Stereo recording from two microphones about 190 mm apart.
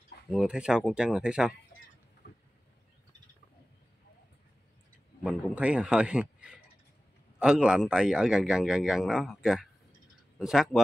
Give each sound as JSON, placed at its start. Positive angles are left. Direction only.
{"t": 0.3, "sound": "a man's voice", "side_deg": -5}
{"t": 2.2, "sound": "boat", "side_deg": 55}
{"t": 5.2, "sound": "a man's voice", "side_deg": -5}